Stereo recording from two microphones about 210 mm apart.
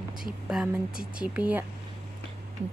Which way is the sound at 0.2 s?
5° right (ahead or behind).